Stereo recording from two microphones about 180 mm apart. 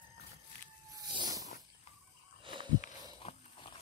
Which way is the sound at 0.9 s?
25° right (ahead or behind).